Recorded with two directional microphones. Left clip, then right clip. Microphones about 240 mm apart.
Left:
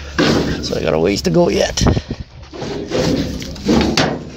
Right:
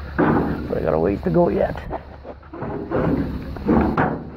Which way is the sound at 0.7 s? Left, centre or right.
Left.